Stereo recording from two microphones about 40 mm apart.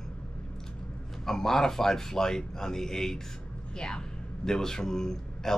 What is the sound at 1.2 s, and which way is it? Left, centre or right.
Speech, centre.